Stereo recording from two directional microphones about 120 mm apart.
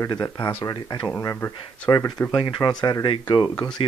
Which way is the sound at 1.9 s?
30° left (ahead or behind).